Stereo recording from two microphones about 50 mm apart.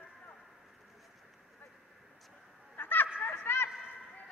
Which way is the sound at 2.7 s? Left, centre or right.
Left.